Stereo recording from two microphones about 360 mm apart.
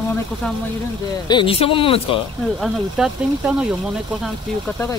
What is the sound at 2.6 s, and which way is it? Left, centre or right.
Speech, centre.